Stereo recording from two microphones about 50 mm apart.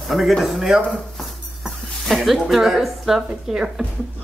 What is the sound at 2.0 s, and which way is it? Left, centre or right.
Speech, centre.